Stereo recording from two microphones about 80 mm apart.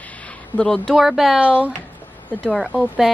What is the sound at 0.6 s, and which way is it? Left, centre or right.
Speech, centre.